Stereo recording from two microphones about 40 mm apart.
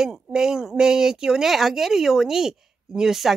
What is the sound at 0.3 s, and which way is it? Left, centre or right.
A woman's voice, centre.